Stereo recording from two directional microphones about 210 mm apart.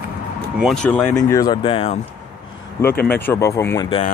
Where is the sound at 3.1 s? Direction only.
10° left (ahead or behind).